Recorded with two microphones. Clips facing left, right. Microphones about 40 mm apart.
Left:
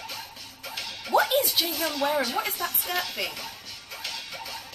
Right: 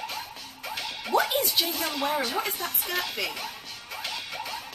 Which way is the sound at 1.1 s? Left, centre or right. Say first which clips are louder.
Left 2 dB; centre.